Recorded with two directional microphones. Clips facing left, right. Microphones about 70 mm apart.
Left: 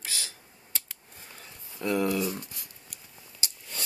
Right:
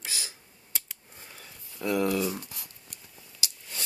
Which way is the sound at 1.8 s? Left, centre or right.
Centre.